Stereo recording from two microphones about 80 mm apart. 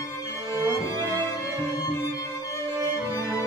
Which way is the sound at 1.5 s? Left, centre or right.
Left.